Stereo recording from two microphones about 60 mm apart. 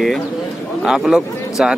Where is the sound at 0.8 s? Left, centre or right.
Centre.